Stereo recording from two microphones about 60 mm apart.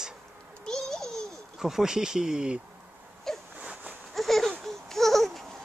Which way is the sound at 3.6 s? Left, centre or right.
Right.